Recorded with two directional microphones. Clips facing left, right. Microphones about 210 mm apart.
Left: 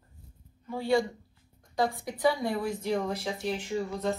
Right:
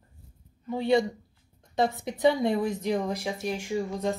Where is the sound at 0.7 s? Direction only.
20° right (ahead or behind).